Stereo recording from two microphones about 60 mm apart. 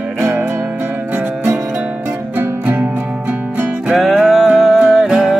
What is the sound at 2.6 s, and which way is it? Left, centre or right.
Music, right.